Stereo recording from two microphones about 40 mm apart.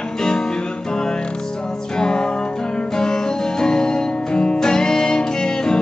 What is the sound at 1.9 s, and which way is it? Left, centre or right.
Music, centre.